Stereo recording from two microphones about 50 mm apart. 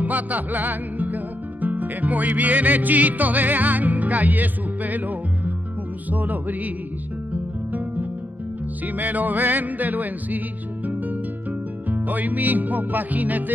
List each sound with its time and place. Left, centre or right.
0.0 s music: right
7.7 s music: right
11.9 s music: right